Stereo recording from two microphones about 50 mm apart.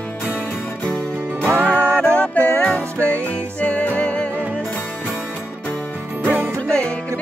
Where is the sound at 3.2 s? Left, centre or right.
Left.